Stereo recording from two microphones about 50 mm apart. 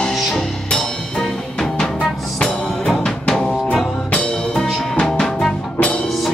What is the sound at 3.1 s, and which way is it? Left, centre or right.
Music, centre.